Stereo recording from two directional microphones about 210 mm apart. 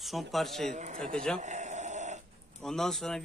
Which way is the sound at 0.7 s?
35° right (ahead or behind).